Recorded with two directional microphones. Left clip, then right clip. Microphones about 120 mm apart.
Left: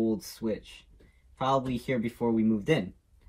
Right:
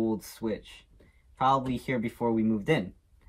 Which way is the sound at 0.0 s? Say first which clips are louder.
Left 1 dB; 20° right (ahead or behind).